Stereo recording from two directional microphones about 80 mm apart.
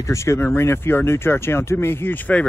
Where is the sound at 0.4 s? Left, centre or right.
Left.